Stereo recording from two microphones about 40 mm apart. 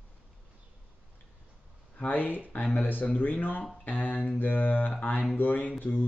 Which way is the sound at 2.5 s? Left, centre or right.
Left.